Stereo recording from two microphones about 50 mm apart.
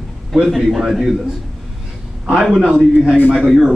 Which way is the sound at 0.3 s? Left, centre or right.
Centre.